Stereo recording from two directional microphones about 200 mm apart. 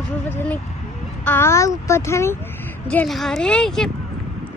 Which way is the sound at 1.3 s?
10° left (ahead or behind).